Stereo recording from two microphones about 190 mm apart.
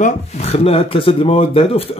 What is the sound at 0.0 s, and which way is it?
Speech, 35° left (ahead or behind).